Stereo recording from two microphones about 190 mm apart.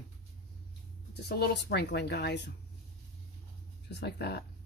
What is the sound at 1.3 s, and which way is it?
Speech, 60° left (ahead or behind).